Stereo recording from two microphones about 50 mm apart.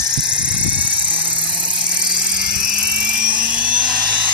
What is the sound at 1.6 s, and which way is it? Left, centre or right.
Helicopter, centre.